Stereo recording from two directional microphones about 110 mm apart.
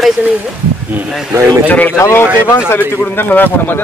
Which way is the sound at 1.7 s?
15° left (ahead or behind).